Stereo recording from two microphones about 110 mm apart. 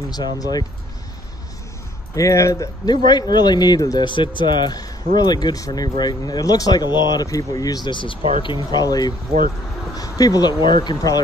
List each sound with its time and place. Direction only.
0.1 s speech: 35° left (ahead or behind)
2.1 s speech: 30° left (ahead or behind); by 8.8 s 45° left (ahead or behind)
8.8 s speech: 35° left (ahead or behind)